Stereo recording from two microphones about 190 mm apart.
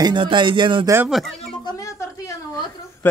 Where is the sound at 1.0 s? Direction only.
Centre (ahead or behind).